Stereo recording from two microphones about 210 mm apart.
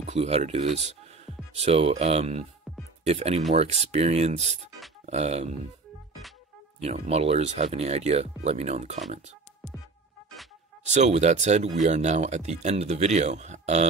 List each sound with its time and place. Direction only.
0.1 s speech: 30° right (ahead or behind)
6.8 s speech: 30° right (ahead or behind)
10.8 s speech: 30° right (ahead or behind)